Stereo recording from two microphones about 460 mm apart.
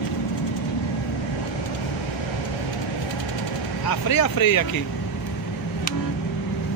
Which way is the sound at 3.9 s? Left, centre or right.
Left.